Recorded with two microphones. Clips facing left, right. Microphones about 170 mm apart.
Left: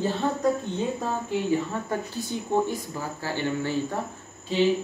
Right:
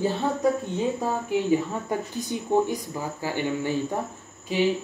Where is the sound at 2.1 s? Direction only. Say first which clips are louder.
Right 4 dB; 15° right (ahead or behind).